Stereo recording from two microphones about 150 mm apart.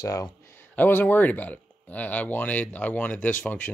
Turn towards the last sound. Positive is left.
turn(degrees=10)  # may be behind; listen again after turning